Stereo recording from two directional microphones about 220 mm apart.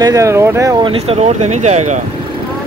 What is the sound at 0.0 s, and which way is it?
Speech, 15° right (ahead or behind).